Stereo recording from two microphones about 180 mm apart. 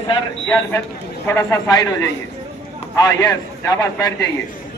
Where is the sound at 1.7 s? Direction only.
25° left (ahead or behind).